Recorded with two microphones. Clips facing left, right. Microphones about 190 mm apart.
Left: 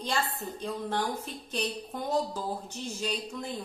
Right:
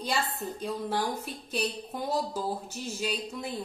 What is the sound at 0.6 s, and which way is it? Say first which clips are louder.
Speech: right 1 dB; 5° right (ahead or behind).